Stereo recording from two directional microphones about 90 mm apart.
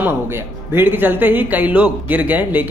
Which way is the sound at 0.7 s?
25° right (ahead or behind).